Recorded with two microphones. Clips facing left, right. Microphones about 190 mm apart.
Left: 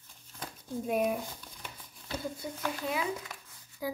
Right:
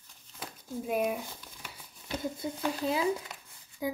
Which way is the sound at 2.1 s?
20° right (ahead or behind).